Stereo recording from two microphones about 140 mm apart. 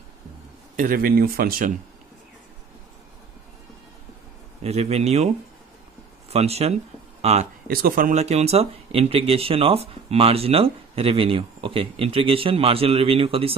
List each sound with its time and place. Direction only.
0.7 s speech: 90° right
4.6 s speech: 50° right (ahead or behind)
6.3 s speech: 50° right (ahead or behind)
7.6 s speech: 90° right
8.1 s speech: 50° right (ahead or behind)